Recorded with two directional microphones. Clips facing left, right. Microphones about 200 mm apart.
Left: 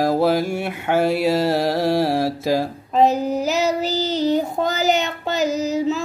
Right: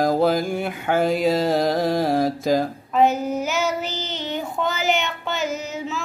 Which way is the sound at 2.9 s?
35° left (ahead or behind).